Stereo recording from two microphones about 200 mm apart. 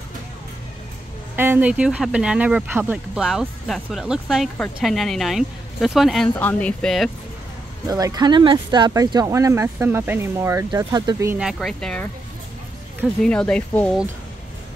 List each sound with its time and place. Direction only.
1.3 s speech: 10° right (ahead or behind)
7.9 s speech: 20° right (ahead or behind)
11.4 s speech: centre (ahead or behind)
13.2 s speech: 5° left (ahead or behind)